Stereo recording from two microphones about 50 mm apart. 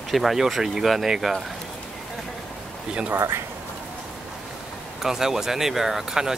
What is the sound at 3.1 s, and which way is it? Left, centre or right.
Speech, right.